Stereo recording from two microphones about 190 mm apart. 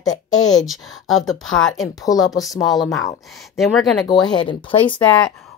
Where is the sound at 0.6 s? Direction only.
Centre (ahead or behind).